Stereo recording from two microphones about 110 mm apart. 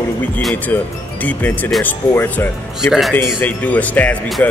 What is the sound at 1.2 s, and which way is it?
Speech, 15° left (ahead or behind).